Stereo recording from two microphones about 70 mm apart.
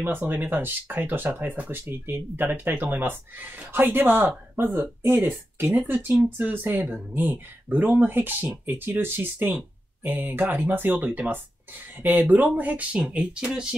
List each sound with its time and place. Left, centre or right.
0.0 s speech: right